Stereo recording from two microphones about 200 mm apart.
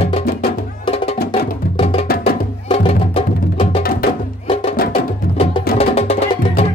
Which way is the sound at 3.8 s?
45° left (ahead or behind).